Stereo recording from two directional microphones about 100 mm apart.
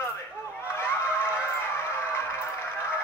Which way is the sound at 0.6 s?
25° left (ahead or behind).